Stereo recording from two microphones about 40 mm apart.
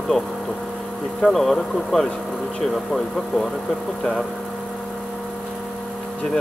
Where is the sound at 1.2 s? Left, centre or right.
Centre.